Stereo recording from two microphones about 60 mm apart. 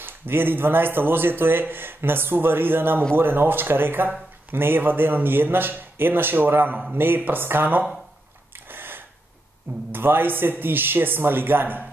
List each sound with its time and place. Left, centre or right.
0.0 s speech: right
8.6 s a sound: right
9.9 s speech: right